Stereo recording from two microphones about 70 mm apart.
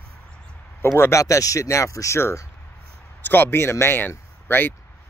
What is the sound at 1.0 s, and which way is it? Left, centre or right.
Speech, left.